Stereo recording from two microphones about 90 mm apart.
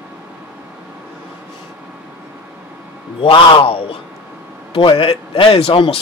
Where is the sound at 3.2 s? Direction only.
80° left.